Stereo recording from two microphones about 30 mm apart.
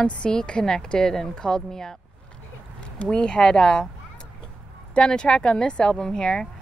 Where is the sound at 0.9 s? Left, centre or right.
Centre.